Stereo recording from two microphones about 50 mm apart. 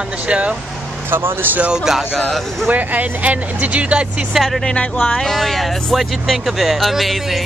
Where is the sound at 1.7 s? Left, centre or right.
Centre.